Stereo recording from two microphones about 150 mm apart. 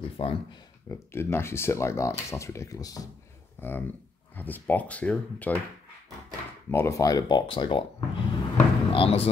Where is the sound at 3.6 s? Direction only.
15° left (ahead or behind).